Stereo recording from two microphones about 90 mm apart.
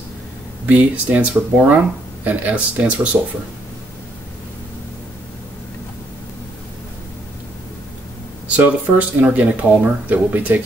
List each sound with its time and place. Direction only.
0.7 s speech: 15° right (ahead or behind)
8.5 s speech: 15° right (ahead or behind)